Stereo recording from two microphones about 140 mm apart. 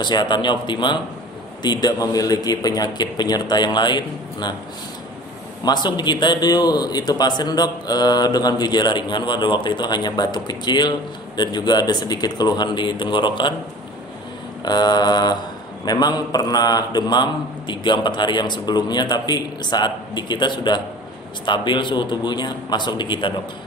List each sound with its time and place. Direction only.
0.0 s a man's voice: 30° left (ahead or behind)
5.7 s a man's voice: 30° left (ahead or behind)
14.6 s a man's voice: 30° left (ahead or behind)